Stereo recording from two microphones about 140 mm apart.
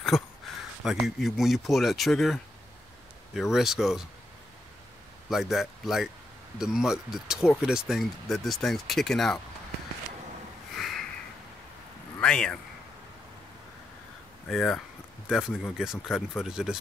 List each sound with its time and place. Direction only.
0.1 s speech: 5° right (ahead or behind)
5.3 s speech: centre (ahead or behind)
10.7 s a sound: centre (ahead or behind)
12.2 s speech: 5° left (ahead or behind)
14.5 s speech: 5° left (ahead or behind)